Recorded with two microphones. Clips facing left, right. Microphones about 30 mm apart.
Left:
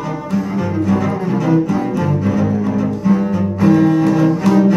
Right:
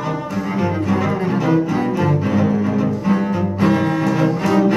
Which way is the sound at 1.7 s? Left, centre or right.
Right.